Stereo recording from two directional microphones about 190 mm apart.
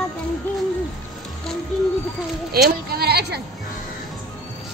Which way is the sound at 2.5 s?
55° right (ahead or behind).